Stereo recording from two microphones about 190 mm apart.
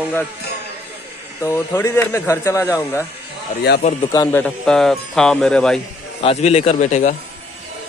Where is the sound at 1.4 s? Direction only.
20° left (ahead or behind).